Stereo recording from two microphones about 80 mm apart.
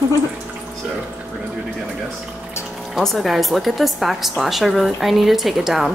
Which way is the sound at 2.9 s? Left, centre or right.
Centre.